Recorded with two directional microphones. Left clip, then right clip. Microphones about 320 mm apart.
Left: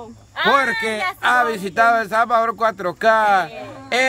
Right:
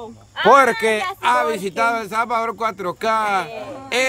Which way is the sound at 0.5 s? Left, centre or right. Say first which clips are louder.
Right 5 dB; centre.